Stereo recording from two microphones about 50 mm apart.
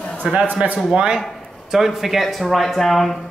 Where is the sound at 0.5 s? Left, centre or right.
Right.